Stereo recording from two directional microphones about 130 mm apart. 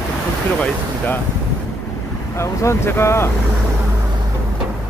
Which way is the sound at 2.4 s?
20° left (ahead or behind).